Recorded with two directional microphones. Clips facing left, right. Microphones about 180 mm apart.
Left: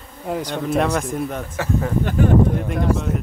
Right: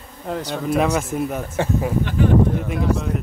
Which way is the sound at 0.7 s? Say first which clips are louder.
Right 1 dB; 5° right (ahead or behind).